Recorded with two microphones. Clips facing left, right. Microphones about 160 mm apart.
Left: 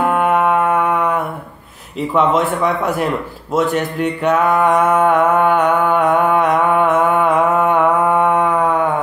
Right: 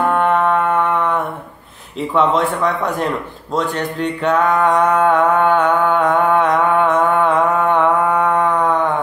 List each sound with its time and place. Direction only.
0.0 s music: 5° left (ahead or behind)
2.0 s speech: 5° left (ahead or behind)
3.5 s music: 10° left (ahead or behind)